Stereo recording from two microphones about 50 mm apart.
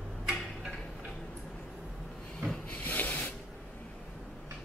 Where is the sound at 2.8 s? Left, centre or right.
Left.